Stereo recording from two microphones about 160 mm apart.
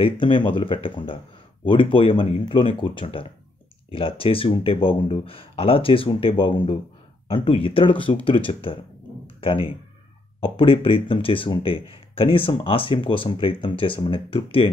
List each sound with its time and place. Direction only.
0.0 s speech: 30° left (ahead or behind)